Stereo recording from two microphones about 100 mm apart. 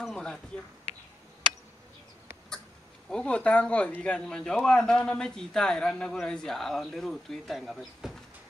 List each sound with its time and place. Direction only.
0.0 s speech: 5° left (ahead or behind)
3.1 s speech: 10° left (ahead or behind)